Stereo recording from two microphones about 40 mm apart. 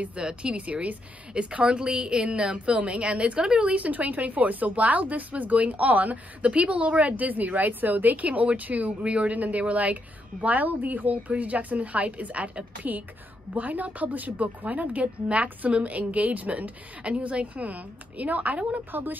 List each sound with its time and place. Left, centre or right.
0.0 s a woman's voice: right
18.9 s speech: right